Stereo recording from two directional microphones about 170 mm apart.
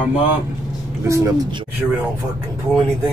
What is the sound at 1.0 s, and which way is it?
Speech, 15° right (ahead or behind).